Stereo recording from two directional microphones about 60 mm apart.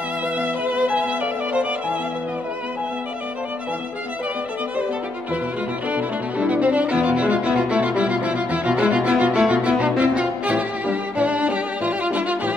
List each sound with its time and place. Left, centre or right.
0.4 s violin: right
5.9 s music: right
9.5 s violin: right